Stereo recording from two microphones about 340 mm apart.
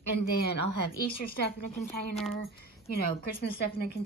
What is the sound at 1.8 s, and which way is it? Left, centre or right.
Speech, centre.